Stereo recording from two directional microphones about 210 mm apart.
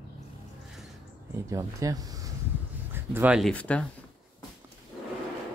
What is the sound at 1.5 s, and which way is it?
Speech, 15° right (ahead or behind).